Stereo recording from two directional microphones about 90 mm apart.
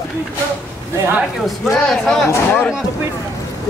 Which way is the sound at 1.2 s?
Centre (ahead or behind).